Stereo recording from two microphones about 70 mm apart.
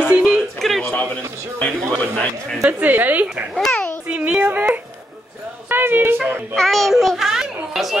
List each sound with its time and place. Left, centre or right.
0.1 s a sound: centre
0.6 s a sound: centre
1.6 s speech: centre
2.8 s speech: right
3.5 s a child's voice: centre
4.1 s child singing: centre
5.7 s a woman's voice: right
6.5 s a child's voice: centre